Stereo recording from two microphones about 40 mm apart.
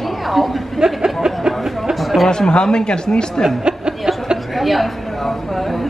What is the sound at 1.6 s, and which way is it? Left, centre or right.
Music, centre.